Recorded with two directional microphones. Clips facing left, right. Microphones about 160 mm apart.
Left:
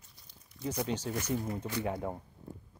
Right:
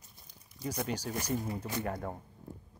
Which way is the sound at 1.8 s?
5° left (ahead or behind).